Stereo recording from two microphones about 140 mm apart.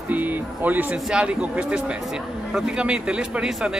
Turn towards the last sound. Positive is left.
turn(degrees=-5)  # may be behind; listen again after turning